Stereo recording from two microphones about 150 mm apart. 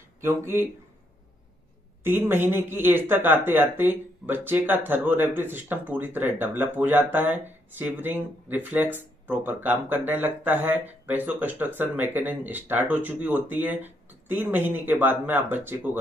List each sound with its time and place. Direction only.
0.2 s speech: 15° right (ahead or behind)
2.0 s speech: 15° right (ahead or behind)